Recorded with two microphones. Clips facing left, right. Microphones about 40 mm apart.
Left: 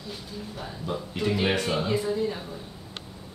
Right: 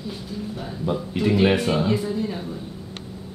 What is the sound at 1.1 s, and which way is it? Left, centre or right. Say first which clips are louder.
Speech: right 6 dB; centre.